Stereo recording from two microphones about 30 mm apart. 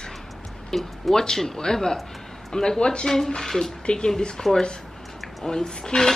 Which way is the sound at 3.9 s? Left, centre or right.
Left.